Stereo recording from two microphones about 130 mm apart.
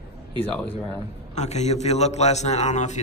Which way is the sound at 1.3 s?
60° left (ahead or behind).